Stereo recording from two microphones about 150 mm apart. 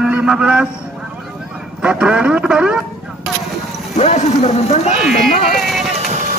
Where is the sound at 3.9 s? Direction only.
45° left (ahead or behind).